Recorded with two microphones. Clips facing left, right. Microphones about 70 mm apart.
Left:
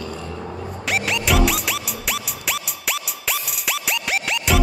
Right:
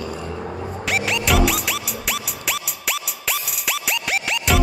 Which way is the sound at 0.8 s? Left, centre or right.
Centre.